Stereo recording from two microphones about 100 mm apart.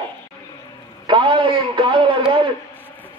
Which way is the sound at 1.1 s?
55° right (ahead or behind).